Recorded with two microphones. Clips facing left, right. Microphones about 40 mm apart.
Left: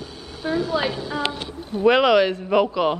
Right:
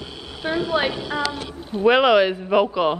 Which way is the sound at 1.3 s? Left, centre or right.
Right.